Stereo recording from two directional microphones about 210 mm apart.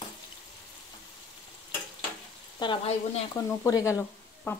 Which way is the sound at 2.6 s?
25° left (ahead or behind).